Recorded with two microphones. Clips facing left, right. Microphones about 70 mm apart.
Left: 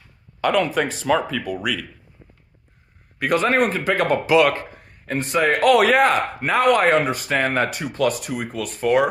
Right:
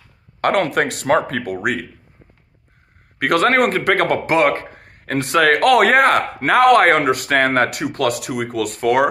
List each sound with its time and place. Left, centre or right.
0.4 s a man's voice: right
3.2 s a man's voice: right
4.4 s a man's voice: right